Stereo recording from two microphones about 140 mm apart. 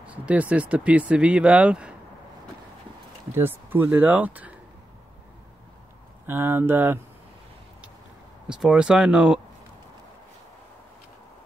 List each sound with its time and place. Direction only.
0.0 s speech: 10° right (ahead or behind)
3.3 s speech: 15° right (ahead or behind)
6.2 s speech: 15° right (ahead or behind)
8.5 s speech: 5° right (ahead or behind)